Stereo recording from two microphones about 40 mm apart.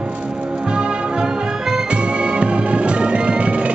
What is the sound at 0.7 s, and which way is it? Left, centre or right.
Music, right.